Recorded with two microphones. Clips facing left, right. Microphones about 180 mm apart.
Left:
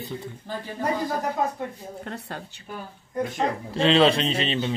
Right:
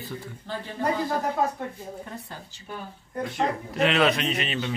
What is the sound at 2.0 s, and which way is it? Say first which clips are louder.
Speech: left 4 dB; 70° left (ahead or behind).